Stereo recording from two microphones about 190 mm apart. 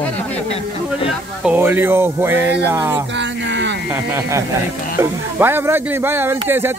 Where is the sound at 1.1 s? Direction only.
10° right (ahead or behind).